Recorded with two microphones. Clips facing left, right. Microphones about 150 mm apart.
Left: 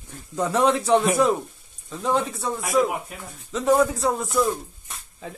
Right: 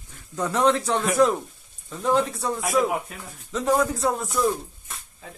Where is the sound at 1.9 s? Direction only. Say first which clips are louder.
Right 1 dB; centre (ahead or behind).